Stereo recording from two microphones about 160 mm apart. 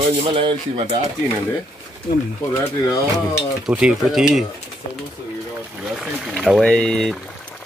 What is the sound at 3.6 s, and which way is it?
Speech, 5° right (ahead or behind).